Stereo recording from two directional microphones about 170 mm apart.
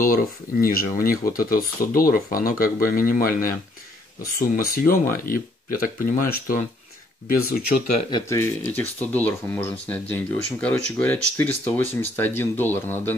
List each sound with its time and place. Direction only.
0.0 s speech: 55° left (ahead or behind)
8.1 s speech: 15° left (ahead or behind)